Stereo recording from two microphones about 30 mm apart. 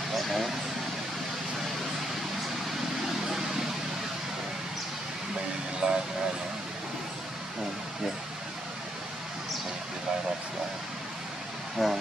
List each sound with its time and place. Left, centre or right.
0.1 s vehicle: centre
3.3 s vehicle: centre
5.8 s vehicle: right
11.8 s speech: centre